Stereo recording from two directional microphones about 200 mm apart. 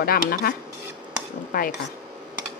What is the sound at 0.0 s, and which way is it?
Speech, 50° left (ahead or behind).